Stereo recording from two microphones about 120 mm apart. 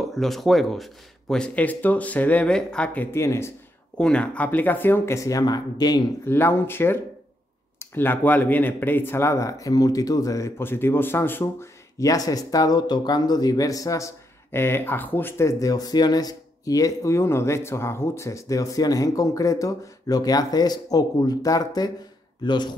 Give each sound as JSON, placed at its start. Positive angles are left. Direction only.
{"t": 0.1, "sound": "speech", "side_deg": 0}
{"t": 4.0, "sound": "speech", "side_deg": 10}
{"t": 6.2, "sound": "a man's voice", "side_deg": 20}